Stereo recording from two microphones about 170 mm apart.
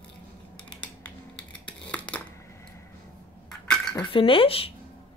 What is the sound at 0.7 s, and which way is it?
Scissors, 5° left (ahead or behind).